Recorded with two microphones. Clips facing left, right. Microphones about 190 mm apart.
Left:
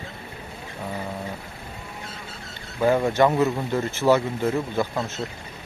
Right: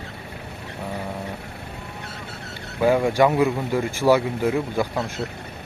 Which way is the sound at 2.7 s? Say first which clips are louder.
Right 1 dB; 10° right (ahead or behind).